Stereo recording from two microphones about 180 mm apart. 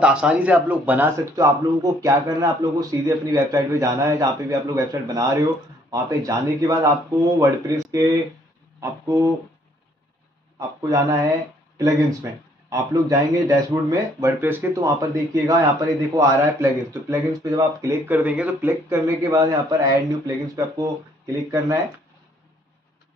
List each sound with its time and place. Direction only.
0.0 s speech: 5° right (ahead or behind)
10.8 s speech: 20° right (ahead or behind)